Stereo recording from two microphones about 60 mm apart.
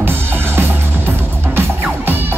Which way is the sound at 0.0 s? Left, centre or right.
Right.